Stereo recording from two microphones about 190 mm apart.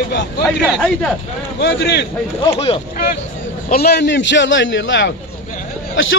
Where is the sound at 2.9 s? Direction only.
45° left (ahead or behind).